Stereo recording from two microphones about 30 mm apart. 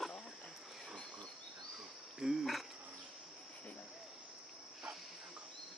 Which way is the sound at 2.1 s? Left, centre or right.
Centre.